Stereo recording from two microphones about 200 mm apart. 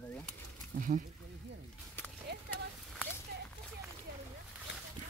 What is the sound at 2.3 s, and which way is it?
Horse, 55° right (ahead or behind).